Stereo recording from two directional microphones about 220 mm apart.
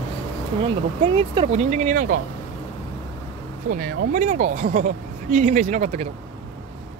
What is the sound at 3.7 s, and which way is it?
Speech, 40° right (ahead or behind).